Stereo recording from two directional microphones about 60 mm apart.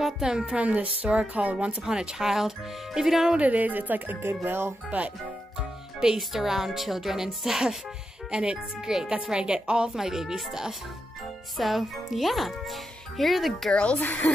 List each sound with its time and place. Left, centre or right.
0.0 s a woman's voice: centre
0.6 s speech: right
1.8 s a woman's voice: centre
3.3 s speech: right
5.6 s a woman's voice: centre
13.7 s speech: centre
13.9 s speech: left